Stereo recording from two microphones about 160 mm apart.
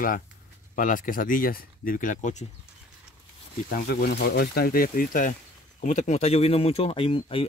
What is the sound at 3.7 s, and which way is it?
Speech, 75° left (ahead or behind).